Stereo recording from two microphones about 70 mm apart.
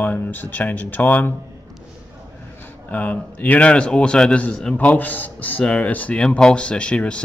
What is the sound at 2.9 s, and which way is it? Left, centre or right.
A man's voice, left.